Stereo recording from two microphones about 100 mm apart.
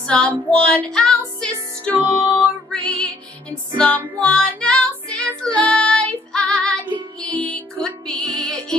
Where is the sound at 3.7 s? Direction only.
15° left (ahead or behind).